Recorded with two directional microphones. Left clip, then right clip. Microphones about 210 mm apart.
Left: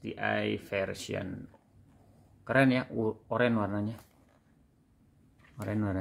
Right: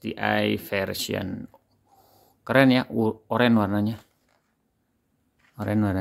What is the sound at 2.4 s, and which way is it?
Speech, 45° right (ahead or behind).